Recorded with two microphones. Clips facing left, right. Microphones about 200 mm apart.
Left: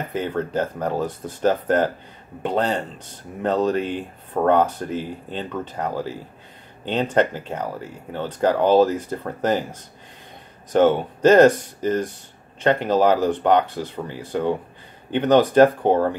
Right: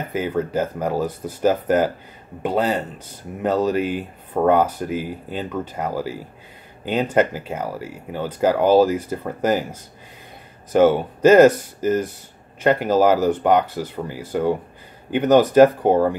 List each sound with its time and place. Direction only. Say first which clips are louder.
0.1 s speech: right 3 dB; 5° right (ahead or behind)